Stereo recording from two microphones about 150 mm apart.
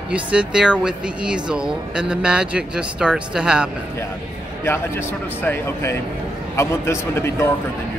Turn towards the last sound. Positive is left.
turn(degrees=15)  # may be behind; listen again after turning